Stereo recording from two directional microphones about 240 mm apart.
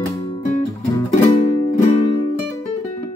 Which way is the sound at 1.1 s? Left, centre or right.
Left.